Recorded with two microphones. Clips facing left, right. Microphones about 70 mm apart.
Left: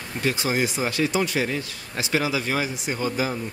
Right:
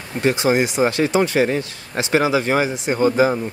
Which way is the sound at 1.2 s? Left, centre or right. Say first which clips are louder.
Right 7 dB; right.